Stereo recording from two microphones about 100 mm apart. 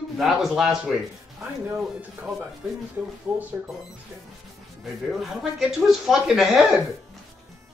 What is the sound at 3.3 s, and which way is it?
Speech, 15° right (ahead or behind).